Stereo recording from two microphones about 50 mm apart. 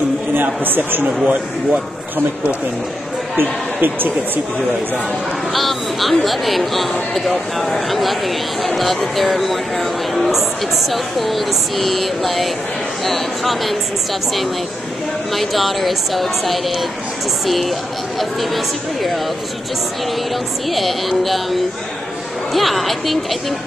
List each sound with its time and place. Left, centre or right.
0.3 s a man's voice: right
1.0 s speech: right
3.3 s speech: right
5.5 s speech: centre
15.3 s speech: centre
20.7 s speech: centre